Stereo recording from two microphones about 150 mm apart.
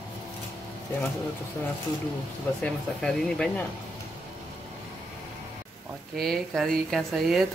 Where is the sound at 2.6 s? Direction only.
5° left (ahead or behind).